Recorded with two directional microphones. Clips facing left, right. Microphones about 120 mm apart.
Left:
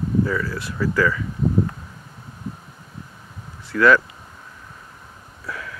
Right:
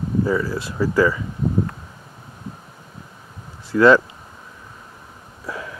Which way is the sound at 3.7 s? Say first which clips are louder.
Right 3 dB; 25° right (ahead or behind).